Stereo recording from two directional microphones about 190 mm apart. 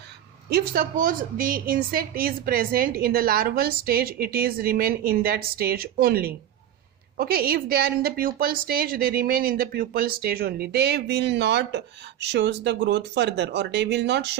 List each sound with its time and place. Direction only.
0.5 s a woman's voice: 55° right (ahead or behind)